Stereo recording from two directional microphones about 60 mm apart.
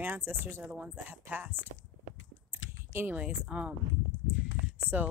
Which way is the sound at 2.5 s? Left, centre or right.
Right.